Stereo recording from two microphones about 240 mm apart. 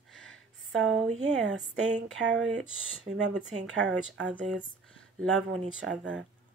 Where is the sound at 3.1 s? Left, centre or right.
Right.